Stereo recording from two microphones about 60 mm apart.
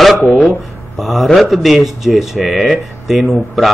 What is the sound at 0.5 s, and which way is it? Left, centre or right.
Speech, centre.